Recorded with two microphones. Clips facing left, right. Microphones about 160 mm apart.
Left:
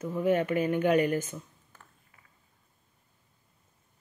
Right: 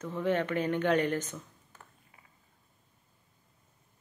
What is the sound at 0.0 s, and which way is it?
Speech, 10° left (ahead or behind).